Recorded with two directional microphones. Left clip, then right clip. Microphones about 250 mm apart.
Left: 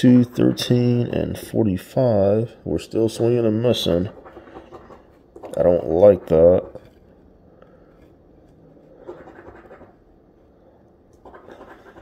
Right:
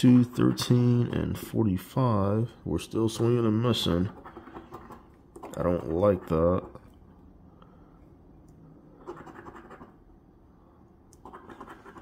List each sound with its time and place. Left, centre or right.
0.0 s speech: centre
5.4 s speech: centre